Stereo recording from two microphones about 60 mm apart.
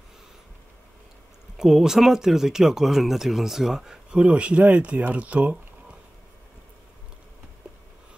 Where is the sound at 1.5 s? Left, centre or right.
Centre.